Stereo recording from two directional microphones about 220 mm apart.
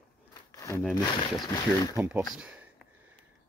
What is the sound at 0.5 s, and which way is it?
Speech, 15° left (ahead or behind).